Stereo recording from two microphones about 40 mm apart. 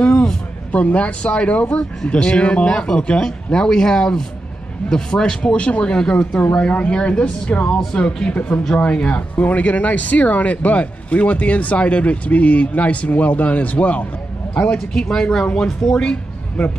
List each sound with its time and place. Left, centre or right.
0.7 s speech: left
6.5 s speech: left
6.9 s speech: left
15.0 s speech: centre